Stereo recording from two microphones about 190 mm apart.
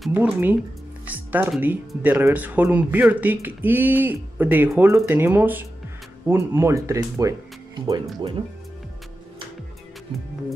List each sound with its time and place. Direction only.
0.0 s speech: 10° right (ahead or behind)